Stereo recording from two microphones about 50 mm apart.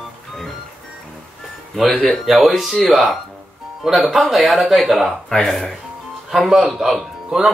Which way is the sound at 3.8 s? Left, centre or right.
Centre.